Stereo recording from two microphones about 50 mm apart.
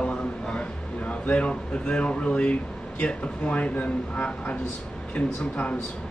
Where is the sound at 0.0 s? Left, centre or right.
Left.